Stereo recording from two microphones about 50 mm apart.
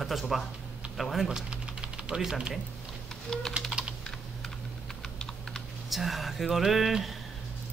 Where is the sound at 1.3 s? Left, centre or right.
Centre.